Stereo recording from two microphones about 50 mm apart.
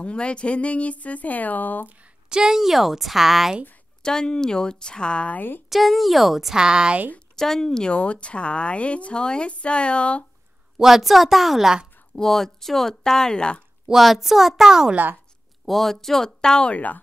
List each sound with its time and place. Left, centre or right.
0.0 s a woman's voice: left
2.2 s a woman's voice: centre
4.0 s speech: centre
5.7 s a woman's voice: centre
7.3 s a woman's voice: centre
10.8 s a woman's voice: centre
13.8 s a woman's voice: centre
15.6 s speech: centre
16.7 s a woman's voice: left